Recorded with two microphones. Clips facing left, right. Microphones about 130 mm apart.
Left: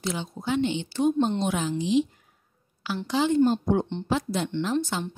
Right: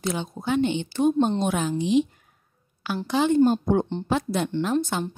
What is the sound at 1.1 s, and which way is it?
Speech, 35° right (ahead or behind).